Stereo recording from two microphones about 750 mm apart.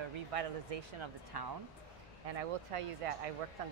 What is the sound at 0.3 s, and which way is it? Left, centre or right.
Speech, right.